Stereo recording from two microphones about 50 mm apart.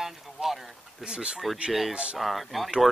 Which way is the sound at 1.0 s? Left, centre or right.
Centre.